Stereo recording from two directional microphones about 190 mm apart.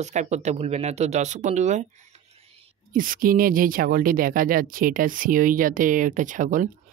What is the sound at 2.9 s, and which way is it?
Speech, 45° right (ahead or behind).